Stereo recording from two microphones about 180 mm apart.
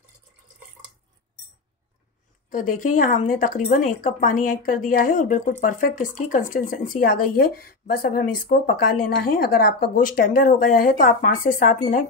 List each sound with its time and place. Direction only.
2.5 s speech: 45° left (ahead or behind)